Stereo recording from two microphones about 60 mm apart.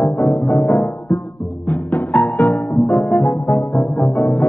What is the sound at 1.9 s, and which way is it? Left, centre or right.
Music, left.